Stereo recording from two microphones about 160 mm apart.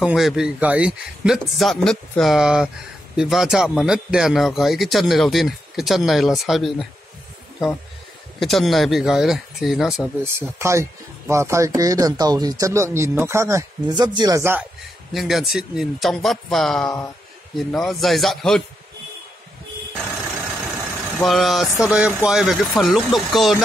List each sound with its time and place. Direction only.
0.0 s speech: 5° right (ahead or behind)
8.4 s speech: centre (ahead or behind)
10.6 s speech: 15° right (ahead or behind)
14.4 s speech: 10° right (ahead or behind)
15.1 s speech: centre (ahead or behind)
20.6 s vehicle: 10° right (ahead or behind)
21.2 s speech: centre (ahead or behind)